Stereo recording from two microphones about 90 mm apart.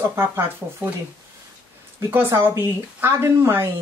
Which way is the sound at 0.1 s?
25° right (ahead or behind).